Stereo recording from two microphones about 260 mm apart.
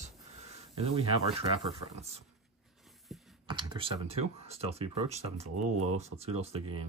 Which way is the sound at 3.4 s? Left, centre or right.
Centre.